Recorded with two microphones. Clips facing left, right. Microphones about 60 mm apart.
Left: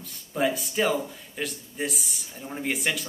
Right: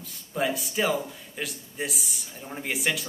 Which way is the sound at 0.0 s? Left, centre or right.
Centre.